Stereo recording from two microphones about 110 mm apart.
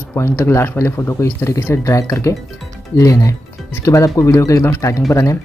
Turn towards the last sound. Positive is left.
turn(degrees=30)  # may be behind; listen again after turning